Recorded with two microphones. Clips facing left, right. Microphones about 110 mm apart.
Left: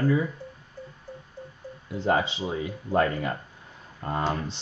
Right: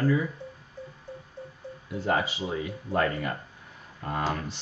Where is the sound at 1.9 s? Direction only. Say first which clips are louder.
Left 3 dB; 25° left (ahead or behind).